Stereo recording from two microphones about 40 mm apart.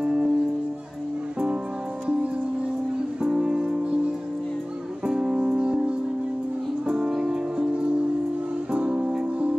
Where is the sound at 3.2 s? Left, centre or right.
Centre.